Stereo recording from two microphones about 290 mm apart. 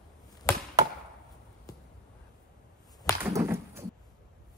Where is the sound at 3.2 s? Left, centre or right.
Centre.